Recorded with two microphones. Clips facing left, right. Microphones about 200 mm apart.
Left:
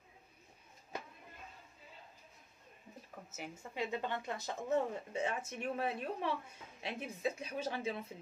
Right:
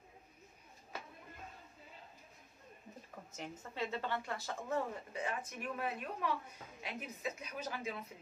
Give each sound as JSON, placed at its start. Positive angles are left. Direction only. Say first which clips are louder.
{"t": 3.3, "sound": "speech", "louder": "even", "side_deg": 5}